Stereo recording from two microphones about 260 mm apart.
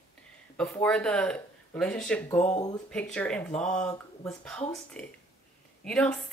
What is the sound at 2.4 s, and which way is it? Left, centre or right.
Speech, centre.